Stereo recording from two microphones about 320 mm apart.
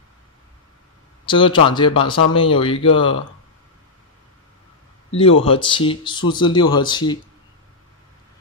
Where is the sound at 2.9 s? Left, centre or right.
Left.